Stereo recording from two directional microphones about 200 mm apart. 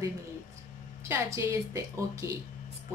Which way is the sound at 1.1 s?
15° right (ahead or behind).